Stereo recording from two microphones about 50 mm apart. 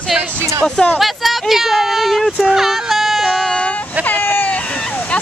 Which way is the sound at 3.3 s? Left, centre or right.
Centre.